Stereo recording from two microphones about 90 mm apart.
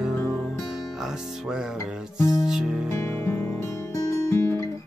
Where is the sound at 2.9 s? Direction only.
25° left (ahead or behind).